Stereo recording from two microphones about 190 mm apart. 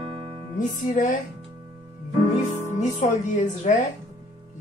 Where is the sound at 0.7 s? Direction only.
40° left (ahead or behind).